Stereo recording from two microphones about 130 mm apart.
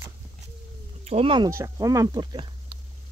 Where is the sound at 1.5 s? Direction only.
25° right (ahead or behind).